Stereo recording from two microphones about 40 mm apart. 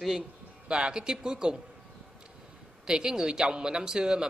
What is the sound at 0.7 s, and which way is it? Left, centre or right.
Speech, right.